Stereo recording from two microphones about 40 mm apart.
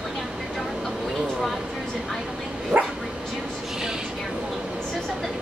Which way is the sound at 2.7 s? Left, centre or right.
Right.